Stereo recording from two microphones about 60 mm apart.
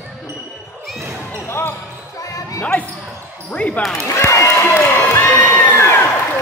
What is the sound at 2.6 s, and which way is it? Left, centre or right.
Basketball bounce, left.